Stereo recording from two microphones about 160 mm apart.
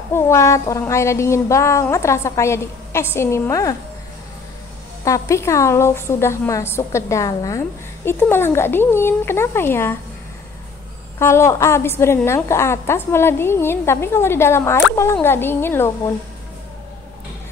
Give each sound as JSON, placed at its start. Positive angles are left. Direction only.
{"t": 0.1, "sound": "a woman's voice", "side_deg": 15}
{"t": 5.0, "sound": "a woman's voice", "side_deg": 20}
{"t": 11.1, "sound": "a woman's voice", "side_deg": 15}